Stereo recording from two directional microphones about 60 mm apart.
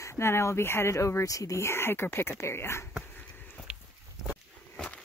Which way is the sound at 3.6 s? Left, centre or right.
Centre.